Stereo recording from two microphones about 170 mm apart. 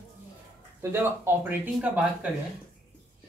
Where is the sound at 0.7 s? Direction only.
15° right (ahead or behind).